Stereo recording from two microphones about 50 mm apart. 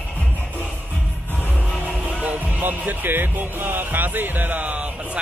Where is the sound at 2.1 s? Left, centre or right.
Right.